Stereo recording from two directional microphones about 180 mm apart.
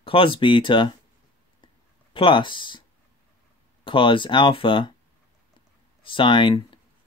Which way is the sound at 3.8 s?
30° left (ahead or behind).